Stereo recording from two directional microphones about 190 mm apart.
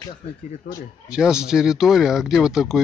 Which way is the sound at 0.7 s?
45° left (ahead or behind).